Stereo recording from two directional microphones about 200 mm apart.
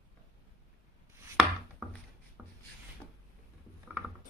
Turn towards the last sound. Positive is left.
turn(degrees=-5)  # may be behind; listen again after turning